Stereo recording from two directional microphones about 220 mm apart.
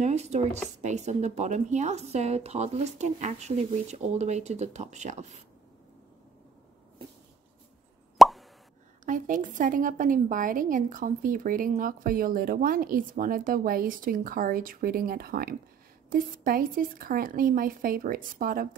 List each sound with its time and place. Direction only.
0.0 s a woman's voice: 30° right (ahead or behind)
8.2 s plop: centre (ahead or behind)
9.0 s a woman's voice: 35° right (ahead or behind)